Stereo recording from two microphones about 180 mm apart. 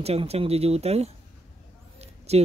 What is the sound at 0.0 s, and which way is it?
Speech, 35° right (ahead or behind).